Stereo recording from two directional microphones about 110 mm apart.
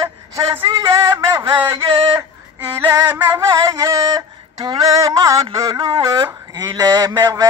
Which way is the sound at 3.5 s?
30° right (ahead or behind).